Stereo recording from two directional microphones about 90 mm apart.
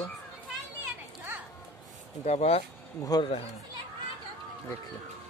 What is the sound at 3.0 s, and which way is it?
Speech, 45° left (ahead or behind).